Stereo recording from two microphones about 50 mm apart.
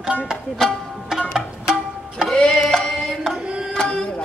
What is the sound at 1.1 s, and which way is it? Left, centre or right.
Music, centre.